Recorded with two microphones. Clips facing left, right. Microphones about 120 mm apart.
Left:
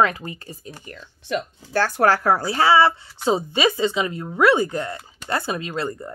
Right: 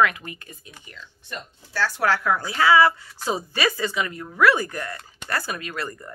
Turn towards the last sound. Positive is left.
turn(degrees=25)  # may be behind; listen again after turning